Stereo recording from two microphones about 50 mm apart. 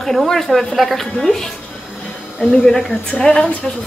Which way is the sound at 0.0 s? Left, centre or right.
Centre.